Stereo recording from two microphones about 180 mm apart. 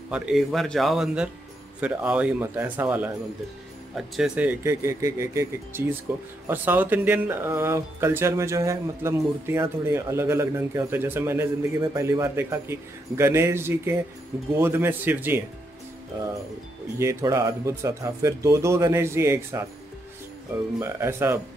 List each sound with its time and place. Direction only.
0.1 s speech: 5° right (ahead or behind)
17.0 s speech: 15° right (ahead or behind)
20.8 s speech: 15° right (ahead or behind)